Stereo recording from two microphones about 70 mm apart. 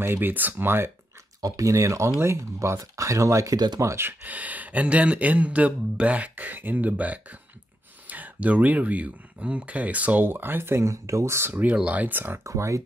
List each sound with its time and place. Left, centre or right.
0.0 s speech: right
1.4 s speech: right
3.5 s speech: right
3.8 s speech: right
4.2 s speech: right
11.6 s speech: centre
12.4 s speech: right